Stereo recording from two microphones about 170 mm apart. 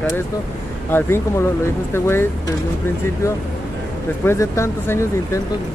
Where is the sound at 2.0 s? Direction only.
15° left (ahead or behind).